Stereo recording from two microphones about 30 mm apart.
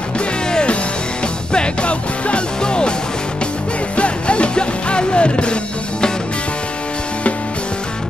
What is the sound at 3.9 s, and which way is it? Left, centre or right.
Music, left.